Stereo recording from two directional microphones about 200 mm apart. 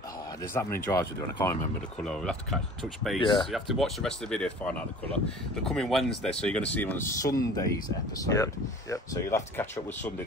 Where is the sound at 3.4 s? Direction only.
Centre (ahead or behind).